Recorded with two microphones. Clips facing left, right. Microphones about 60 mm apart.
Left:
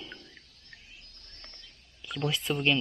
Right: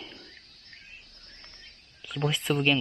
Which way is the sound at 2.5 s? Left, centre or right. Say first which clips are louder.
Right 3 dB; centre.